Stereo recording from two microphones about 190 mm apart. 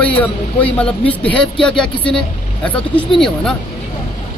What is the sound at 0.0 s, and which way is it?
Speech, 10° left (ahead or behind).